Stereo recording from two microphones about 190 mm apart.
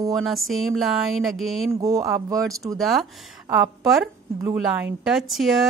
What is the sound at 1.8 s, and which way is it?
Speech, 15° right (ahead or behind).